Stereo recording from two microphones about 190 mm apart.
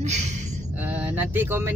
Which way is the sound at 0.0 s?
35° right (ahead or behind).